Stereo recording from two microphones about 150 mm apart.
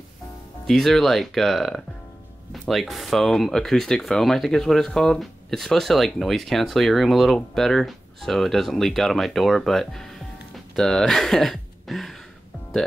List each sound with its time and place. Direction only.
0.7 s speech: centre (ahead or behind)